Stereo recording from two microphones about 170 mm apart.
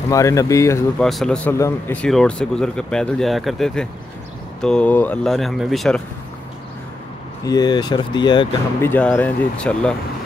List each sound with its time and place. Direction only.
0.1 s speech: 20° left (ahead or behind)
0.9 s speech: 5° left (ahead or behind)
7.4 s speech: 25° left (ahead or behind)
8.8 s speech: 10° left (ahead or behind)